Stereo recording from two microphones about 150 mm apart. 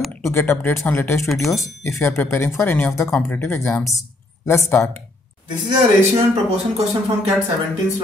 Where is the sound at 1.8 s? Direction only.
15° left (ahead or behind).